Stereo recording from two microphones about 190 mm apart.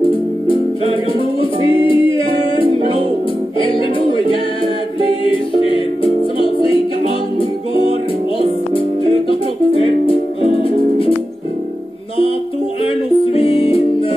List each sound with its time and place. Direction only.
1.4 s music: 30° left (ahead or behind)
12.8 s music: 30° left (ahead or behind)